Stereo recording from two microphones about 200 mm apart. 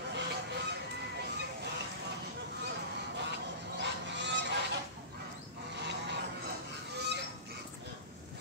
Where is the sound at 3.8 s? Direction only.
60° right (ahead or behind).